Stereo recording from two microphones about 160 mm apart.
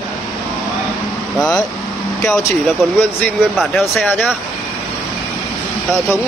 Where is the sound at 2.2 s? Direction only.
15° left (ahead or behind).